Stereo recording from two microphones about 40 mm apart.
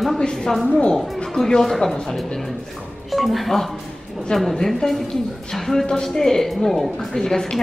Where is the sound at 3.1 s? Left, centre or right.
Centre.